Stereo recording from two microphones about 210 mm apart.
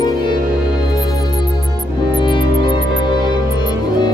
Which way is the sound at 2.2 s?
25° left (ahead or behind).